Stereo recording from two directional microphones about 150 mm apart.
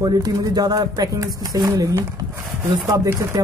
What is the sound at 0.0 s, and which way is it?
A man's voice, 25° right (ahead or behind).